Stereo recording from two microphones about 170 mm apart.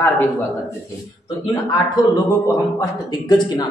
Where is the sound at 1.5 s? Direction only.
25° left (ahead or behind).